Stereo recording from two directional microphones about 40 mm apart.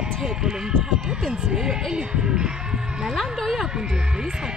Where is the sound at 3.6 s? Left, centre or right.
Centre.